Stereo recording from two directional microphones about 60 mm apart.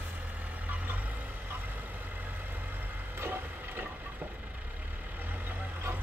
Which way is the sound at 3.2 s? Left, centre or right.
Right.